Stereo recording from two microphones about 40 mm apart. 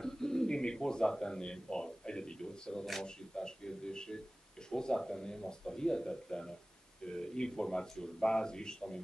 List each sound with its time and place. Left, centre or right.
0.0 s bird: centre
1.1 s speech: centre